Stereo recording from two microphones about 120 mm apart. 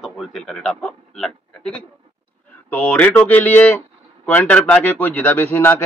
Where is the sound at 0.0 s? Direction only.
Centre (ahead or behind).